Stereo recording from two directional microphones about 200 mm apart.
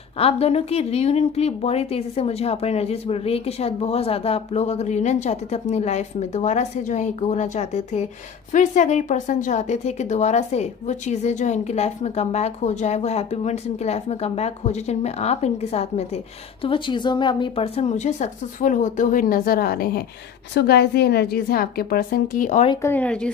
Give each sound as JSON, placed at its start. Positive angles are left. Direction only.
{"t": 0.2, "sound": "a woman's voice", "side_deg": 30}
{"t": 22.7, "sound": "speech", "side_deg": 15}